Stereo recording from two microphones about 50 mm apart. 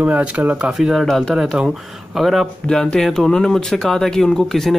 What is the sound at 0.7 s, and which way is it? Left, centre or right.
Speech, centre.